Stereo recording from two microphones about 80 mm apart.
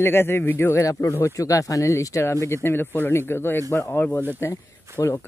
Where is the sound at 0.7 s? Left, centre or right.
Left.